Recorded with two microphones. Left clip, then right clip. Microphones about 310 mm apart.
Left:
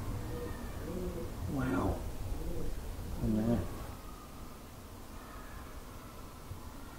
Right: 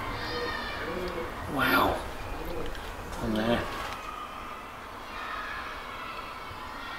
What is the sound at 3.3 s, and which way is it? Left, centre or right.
Speech, centre.